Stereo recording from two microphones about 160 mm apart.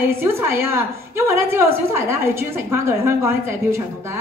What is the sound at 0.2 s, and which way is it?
A woman's voice, 15° right (ahead or behind).